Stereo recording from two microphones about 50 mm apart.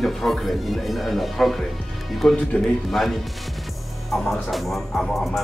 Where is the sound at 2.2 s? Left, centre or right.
Left.